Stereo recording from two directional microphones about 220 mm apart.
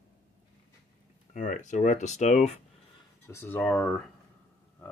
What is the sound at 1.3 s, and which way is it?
Speech, 35° left (ahead or behind).